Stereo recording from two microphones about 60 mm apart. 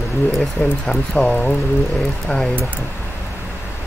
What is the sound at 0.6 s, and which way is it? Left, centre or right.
Speech, left.